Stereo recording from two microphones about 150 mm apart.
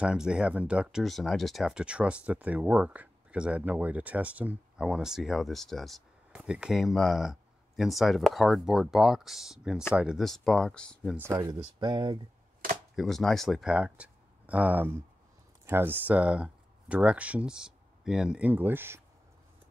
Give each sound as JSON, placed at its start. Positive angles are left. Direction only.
{"t": 0.0, "sound": "speech", "side_deg": -5}
{"t": 11.3, "sound": "speech", "side_deg": -25}
{"t": 12.9, "sound": "speech", "side_deg": 0}